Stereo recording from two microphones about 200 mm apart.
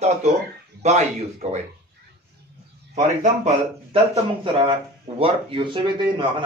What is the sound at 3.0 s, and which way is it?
Speech, 35° right (ahead or behind).